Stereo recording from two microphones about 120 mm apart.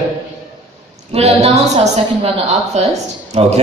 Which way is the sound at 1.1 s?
60° right (ahead or behind).